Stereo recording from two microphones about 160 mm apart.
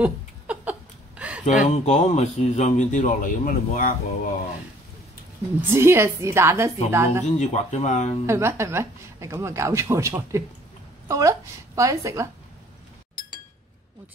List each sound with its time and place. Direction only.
0.0 s a sound: 10° right (ahead or behind)
1.4 s speech: 45° left (ahead or behind)
5.7 s speech: 15° right (ahead or behind)
7.2 s speech: 45° left (ahead or behind)
8.3 s a woman's voice: 15° right (ahead or behind)